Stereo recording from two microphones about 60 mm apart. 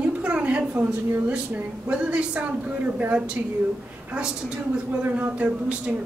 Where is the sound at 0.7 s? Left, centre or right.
Right.